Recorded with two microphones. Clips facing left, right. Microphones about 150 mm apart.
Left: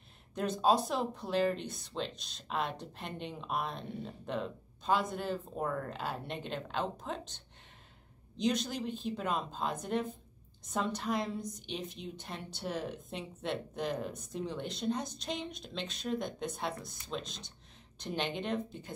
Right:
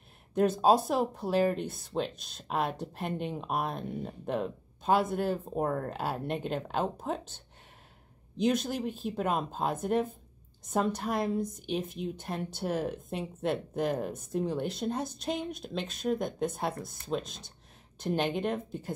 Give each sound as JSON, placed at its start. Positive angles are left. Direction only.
{"t": 0.6, "sound": "speech", "side_deg": -50}
{"t": 8.5, "sound": "speech", "side_deg": -50}